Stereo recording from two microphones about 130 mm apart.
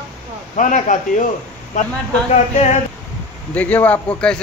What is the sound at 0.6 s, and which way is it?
Speech, 75° left (ahead or behind).